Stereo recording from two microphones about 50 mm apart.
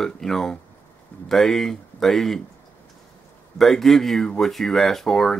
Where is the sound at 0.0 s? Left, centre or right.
Centre.